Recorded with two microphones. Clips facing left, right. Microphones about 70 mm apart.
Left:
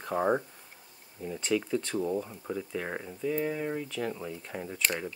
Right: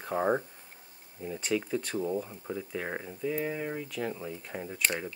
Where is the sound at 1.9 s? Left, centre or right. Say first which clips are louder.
Left 1 dB; centre.